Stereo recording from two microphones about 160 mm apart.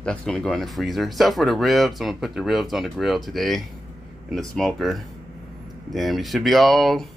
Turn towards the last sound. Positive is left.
turn(degrees=0)  # may be behind; listen again after turning